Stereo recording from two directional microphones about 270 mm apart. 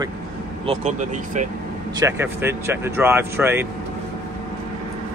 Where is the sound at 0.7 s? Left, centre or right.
Right.